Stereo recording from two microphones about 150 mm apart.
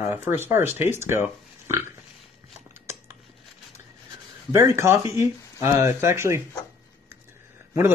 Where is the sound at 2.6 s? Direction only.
20° right (ahead or behind).